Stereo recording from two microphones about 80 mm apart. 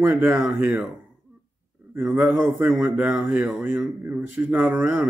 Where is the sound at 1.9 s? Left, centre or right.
Right.